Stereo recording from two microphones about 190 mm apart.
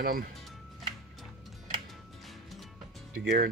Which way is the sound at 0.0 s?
50° right (ahead or behind).